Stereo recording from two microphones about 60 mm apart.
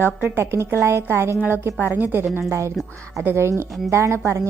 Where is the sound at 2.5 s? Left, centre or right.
Right.